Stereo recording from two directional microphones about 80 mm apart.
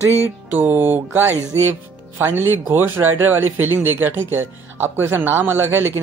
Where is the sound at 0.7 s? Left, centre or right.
Right.